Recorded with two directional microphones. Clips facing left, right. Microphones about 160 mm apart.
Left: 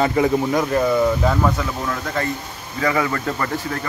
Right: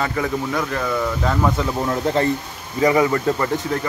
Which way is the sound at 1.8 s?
30° right (ahead or behind).